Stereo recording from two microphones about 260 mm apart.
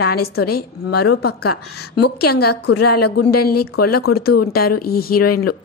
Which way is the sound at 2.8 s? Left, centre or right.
Left.